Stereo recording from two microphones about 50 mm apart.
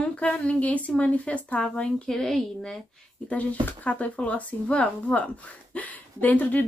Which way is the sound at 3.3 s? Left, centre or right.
Left.